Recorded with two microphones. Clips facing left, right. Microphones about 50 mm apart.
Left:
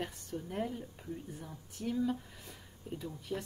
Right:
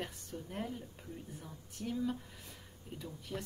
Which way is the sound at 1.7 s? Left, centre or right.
Centre.